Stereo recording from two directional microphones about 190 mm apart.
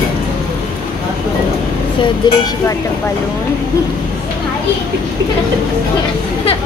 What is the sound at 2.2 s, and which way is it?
Speech, 25° left (ahead or behind).